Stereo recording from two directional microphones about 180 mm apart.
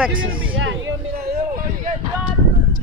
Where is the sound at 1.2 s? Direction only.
50° right (ahead or behind).